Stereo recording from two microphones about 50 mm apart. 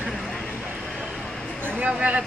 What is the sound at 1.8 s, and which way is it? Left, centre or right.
Speech, right.